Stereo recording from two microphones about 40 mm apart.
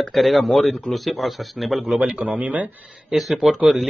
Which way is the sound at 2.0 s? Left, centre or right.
Right.